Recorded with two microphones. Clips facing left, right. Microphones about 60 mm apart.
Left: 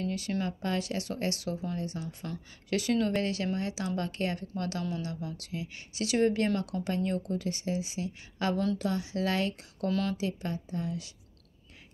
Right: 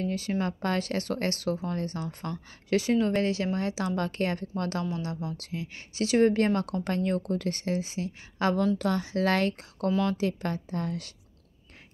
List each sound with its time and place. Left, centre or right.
0.0 s speech: right
0.4 s speech: right
2.7 s speech: right
8.7 s speech: right